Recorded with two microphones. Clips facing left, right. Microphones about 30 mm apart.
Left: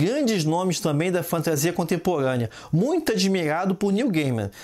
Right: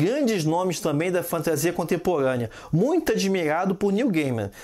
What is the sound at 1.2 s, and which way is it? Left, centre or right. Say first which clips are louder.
Speech: left 1 dB; left.